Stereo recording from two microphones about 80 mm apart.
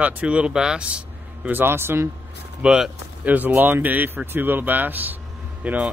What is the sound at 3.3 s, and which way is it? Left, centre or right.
Speech, right.